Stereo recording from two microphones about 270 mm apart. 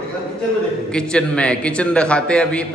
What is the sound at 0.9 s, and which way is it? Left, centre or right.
A man's voice, centre.